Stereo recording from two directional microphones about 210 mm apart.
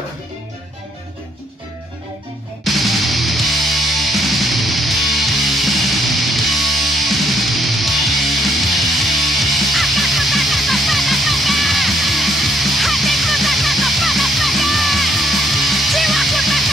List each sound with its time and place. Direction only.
2.6 s music: centre (ahead or behind)